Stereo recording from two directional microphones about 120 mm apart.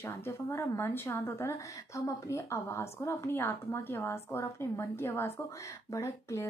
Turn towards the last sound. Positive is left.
turn(degrees=25)  # may be behind; listen again after turning